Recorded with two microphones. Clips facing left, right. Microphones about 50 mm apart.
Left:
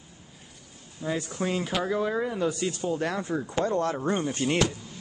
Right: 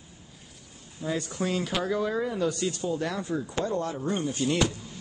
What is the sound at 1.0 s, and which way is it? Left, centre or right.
Speech, centre.